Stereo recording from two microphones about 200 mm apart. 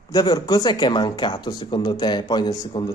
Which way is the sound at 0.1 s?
20° left (ahead or behind).